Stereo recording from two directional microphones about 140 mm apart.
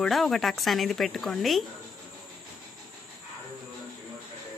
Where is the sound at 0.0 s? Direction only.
Centre (ahead or behind).